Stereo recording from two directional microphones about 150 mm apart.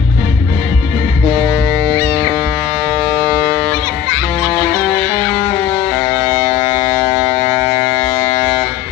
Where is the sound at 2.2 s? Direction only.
15° right (ahead or behind).